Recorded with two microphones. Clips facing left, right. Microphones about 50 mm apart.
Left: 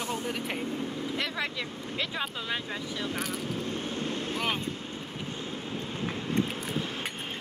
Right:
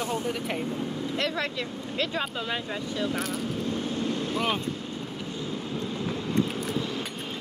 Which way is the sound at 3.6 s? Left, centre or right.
Left.